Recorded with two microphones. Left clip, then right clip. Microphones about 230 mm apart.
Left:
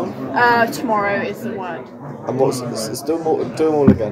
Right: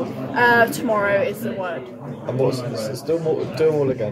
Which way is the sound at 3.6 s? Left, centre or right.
Left.